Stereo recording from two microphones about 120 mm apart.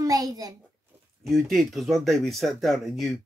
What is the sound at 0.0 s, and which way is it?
Speech, 30° right (ahead or behind).